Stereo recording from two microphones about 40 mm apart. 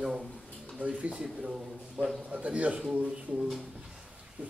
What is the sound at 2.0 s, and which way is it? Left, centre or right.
Speech, right.